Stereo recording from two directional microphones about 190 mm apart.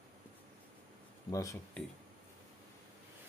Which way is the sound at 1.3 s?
15° left (ahead or behind).